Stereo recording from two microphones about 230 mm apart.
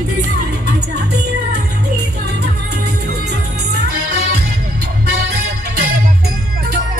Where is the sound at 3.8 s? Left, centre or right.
Right.